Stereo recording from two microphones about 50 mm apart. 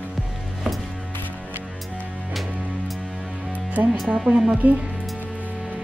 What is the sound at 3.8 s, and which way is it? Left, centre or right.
Music, right.